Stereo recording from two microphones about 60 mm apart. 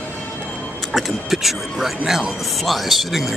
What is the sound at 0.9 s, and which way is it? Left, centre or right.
Speech, centre.